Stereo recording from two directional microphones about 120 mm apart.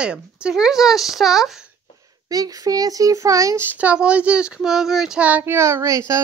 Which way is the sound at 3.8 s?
10° right (ahead or behind).